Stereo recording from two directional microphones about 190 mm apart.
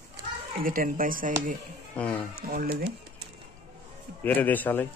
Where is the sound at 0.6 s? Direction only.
45° right (ahead or behind).